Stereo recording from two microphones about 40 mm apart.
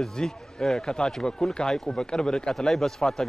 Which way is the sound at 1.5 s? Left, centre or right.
Centre.